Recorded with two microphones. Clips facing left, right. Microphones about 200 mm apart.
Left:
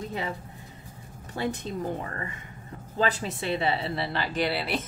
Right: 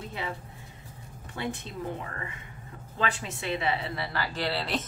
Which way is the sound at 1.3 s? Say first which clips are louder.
Left 4 dB; 40° left (ahead or behind).